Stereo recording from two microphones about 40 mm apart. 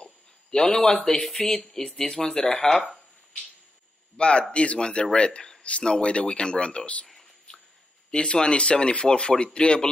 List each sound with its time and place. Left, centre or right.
0.0 s speech: centre
4.2 s speech: left
8.1 s speech: left